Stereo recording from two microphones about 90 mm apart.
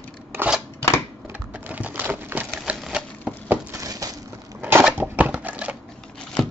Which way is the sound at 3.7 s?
40° right (ahead or behind).